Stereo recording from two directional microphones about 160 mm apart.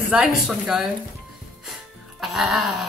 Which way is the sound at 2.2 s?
Centre (ahead or behind).